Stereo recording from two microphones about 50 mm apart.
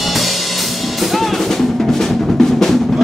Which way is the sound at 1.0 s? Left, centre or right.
Centre.